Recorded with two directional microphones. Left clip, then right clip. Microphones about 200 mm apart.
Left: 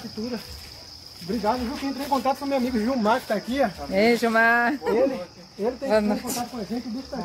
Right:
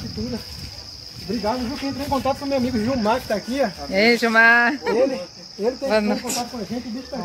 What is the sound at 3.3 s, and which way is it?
Speech, 25° right (ahead or behind).